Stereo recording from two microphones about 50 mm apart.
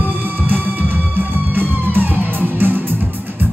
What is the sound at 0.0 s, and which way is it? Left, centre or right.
Music, right.